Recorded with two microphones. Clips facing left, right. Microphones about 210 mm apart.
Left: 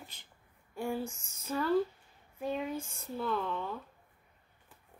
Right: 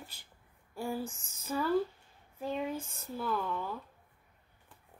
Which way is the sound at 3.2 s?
5° right (ahead or behind).